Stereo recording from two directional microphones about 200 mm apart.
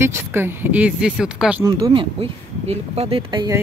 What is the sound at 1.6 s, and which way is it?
Speech, 20° right (ahead or behind).